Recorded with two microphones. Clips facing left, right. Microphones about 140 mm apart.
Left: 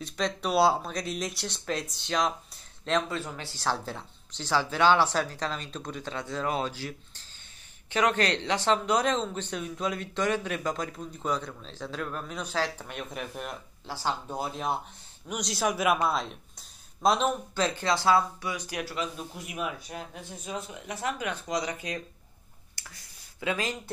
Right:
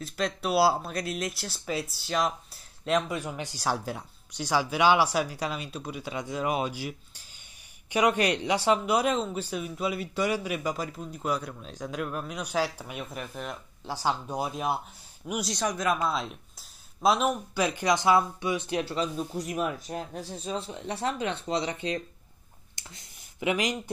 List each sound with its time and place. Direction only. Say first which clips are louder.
0.0 s speech: even; 5° right (ahead or behind)
13.8 s speech: right 3 dB; 15° right (ahead or behind)
15.5 s speech: left 3 dB; 5° left (ahead or behind); by 23.8 s 15° right (ahead or behind)